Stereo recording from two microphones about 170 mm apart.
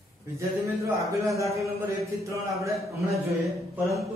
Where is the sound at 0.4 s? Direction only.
15° right (ahead or behind).